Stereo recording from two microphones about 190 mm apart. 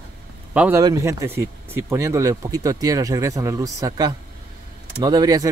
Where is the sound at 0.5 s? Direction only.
5° right (ahead or behind).